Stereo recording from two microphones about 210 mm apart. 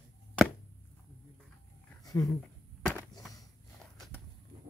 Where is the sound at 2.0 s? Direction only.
15° left (ahead or behind).